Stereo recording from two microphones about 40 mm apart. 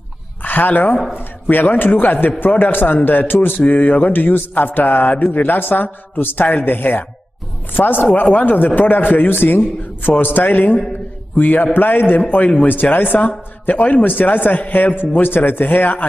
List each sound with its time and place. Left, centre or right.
0.4 s a woman's voice: left
3.4 s mantra: left
13.7 s mantra: left